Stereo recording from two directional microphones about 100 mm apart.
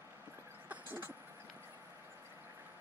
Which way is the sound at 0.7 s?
20° right (ahead or behind).